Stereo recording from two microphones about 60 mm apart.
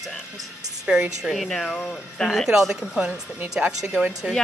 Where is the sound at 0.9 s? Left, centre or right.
Centre.